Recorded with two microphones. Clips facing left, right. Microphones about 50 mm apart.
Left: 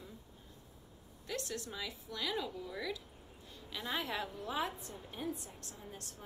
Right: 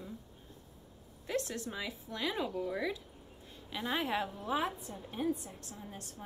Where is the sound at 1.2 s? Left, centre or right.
Right.